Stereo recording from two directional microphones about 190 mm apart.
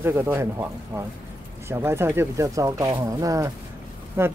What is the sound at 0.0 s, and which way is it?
Speech, 15° right (ahead or behind).